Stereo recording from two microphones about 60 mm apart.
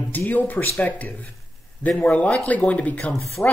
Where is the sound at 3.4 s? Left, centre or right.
Left.